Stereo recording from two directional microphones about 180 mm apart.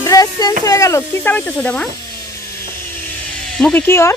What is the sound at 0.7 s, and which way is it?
Speech, 15° left (ahead or behind).